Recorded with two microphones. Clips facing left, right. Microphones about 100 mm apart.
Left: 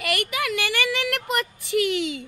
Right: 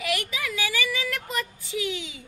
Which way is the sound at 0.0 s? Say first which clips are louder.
Left 3 dB; 65° left (ahead or behind).